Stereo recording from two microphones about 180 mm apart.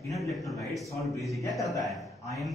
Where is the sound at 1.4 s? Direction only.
20° left (ahead or behind).